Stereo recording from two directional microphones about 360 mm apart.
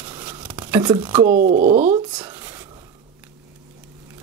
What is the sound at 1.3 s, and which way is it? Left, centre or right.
Speech, right.